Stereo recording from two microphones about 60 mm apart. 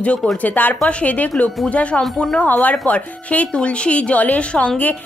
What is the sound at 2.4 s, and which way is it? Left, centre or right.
A woman's voice, left.